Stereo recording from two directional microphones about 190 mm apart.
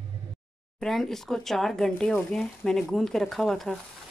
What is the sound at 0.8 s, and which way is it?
Speech, centre (ahead or behind).